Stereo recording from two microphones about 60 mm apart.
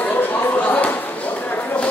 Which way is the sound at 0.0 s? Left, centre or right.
Left.